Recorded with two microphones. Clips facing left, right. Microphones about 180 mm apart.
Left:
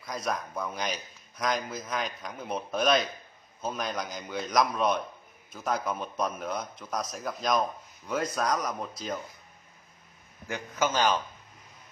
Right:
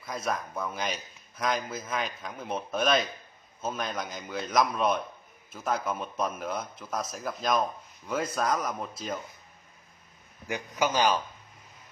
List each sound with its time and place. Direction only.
0.0 s speech: 5° right (ahead or behind)
10.5 s a man's voice: 15° right (ahead or behind)